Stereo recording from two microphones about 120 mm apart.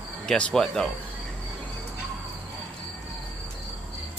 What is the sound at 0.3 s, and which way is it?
Speech, 5° left (ahead or behind).